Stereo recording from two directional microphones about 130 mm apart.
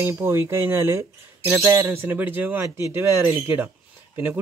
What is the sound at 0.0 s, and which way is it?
Speech, 20° right (ahead or behind).